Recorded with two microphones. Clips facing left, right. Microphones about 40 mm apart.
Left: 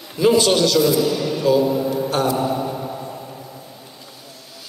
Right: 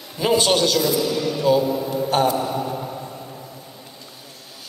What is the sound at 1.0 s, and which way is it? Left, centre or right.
Speech, centre.